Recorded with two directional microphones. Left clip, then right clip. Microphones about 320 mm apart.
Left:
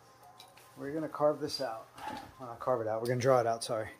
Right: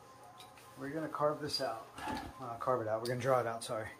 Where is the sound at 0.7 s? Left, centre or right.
Left.